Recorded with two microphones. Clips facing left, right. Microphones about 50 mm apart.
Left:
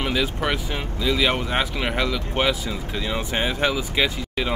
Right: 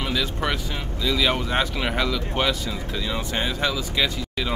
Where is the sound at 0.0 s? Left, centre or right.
Left.